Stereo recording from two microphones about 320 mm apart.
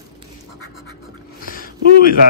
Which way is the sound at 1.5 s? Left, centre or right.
Left.